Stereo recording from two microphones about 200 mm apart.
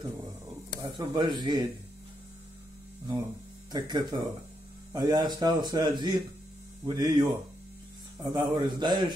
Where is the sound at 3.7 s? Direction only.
20° right (ahead or behind).